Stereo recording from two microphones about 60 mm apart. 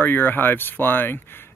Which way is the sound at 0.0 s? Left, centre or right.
Left.